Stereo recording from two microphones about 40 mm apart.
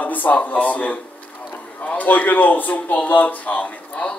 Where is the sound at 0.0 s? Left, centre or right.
Left.